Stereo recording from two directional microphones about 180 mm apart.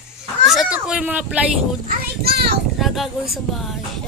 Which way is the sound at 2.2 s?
65° right (ahead or behind).